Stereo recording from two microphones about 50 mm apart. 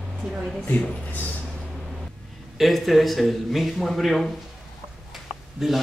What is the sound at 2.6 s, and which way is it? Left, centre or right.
A man's voice, centre.